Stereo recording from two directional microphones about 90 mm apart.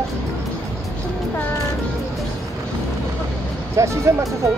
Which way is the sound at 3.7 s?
35° right (ahead or behind).